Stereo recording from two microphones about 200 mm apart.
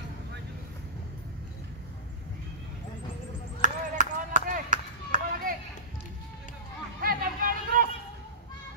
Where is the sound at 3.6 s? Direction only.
40° right (ahead or behind).